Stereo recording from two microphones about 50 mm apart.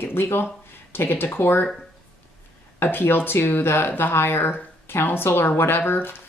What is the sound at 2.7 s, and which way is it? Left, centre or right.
Speech, left.